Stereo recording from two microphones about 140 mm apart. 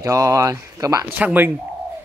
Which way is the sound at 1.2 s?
10° right (ahead or behind).